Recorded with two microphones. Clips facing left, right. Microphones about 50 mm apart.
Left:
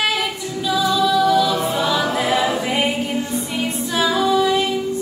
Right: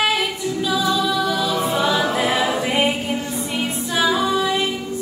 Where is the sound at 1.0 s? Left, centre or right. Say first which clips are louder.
Left 5 dB; centre.